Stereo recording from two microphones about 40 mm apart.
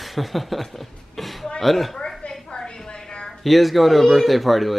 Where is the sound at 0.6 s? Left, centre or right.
Centre.